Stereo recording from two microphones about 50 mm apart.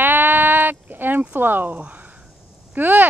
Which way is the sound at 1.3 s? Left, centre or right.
Right.